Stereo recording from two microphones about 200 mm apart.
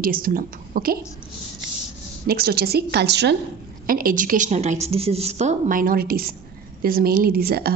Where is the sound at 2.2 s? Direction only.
50° right (ahead or behind).